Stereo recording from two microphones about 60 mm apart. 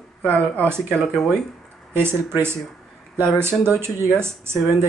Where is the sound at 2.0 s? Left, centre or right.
Right.